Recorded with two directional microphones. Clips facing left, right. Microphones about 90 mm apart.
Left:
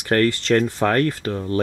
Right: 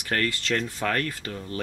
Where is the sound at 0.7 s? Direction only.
35° left (ahead or behind).